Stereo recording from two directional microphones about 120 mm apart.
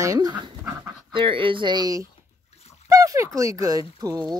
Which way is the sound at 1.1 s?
45° right (ahead or behind).